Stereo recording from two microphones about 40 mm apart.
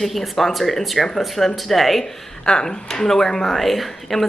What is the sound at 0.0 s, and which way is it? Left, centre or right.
Speech, centre.